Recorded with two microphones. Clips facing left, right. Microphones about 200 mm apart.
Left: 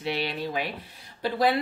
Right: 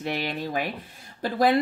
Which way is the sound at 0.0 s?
50° right (ahead or behind).